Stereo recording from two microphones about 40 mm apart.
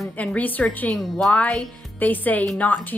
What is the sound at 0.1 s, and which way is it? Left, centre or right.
Speech, left.